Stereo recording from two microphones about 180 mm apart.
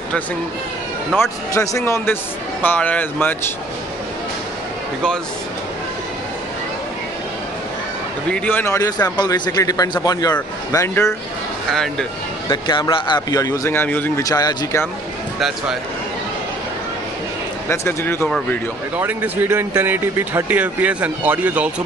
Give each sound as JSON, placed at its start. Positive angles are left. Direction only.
{"t": 1.1, "sound": "speech", "side_deg": 15}
{"t": 8.3, "sound": "a man's voice", "side_deg": 10}
{"t": 11.7, "sound": "speech", "side_deg": 0}
{"t": 12.4, "sound": "a man's voice", "side_deg": 25}
{"t": 15.3, "sound": "speech", "side_deg": 0}
{"t": 17.6, "sound": "speech", "side_deg": 15}
{"t": 18.9, "sound": "speech", "side_deg": -10}